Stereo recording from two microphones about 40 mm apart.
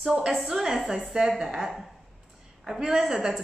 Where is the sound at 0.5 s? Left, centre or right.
Centre.